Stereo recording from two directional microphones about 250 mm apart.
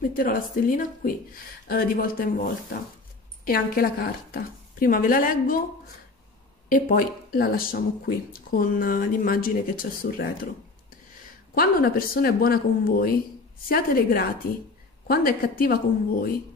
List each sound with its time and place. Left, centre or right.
0.1 s speech: left
6.7 s speech: left
11.5 s speech: left